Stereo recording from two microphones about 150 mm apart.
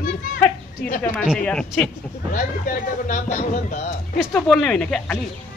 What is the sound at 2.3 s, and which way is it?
Speech, 70° left (ahead or behind).